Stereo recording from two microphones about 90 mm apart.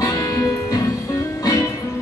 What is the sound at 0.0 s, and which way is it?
Music, 40° left (ahead or behind).